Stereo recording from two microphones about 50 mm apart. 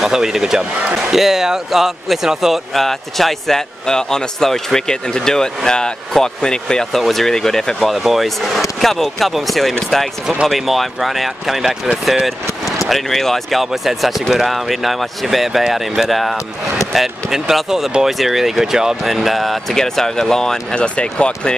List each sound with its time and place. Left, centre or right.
0.0 s speech: centre
2.7 s a man's voice: centre
7.9 s speech: centre
20.8 s speech: left